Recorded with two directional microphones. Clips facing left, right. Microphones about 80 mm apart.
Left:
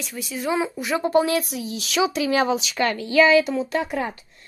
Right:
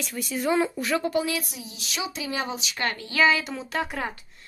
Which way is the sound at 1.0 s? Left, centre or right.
Left.